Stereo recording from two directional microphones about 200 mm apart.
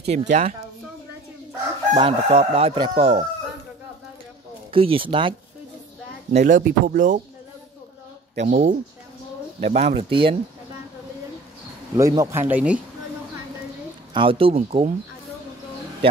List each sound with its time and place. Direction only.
0.0 s speech: 30° right (ahead or behind)
2.0 s speech: 25° right (ahead or behind)
4.6 s speech: 25° right (ahead or behind)
6.3 s speech: 40° right (ahead or behind)
8.4 s speech: 45° right (ahead or behind)
9.6 s speech: 35° right (ahead or behind)
12.0 s speech: 15° right (ahead or behind)
14.1 s speech: 25° right (ahead or behind)